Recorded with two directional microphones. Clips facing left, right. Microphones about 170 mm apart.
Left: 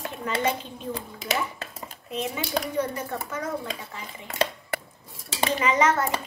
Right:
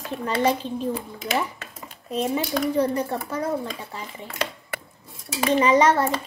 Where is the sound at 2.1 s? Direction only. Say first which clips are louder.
Right 6 dB; 35° right (ahead or behind).